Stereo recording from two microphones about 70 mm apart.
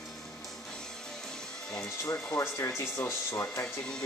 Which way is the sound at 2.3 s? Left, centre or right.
Left.